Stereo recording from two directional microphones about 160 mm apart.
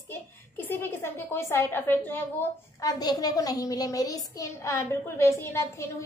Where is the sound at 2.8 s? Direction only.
25° left (ahead or behind).